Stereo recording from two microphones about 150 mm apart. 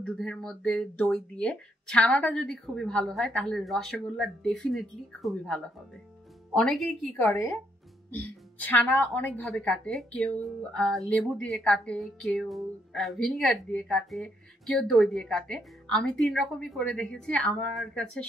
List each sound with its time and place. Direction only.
0.0 s speech: 5° left (ahead or behind)
7.2 s a woman's voice: 15° left (ahead or behind)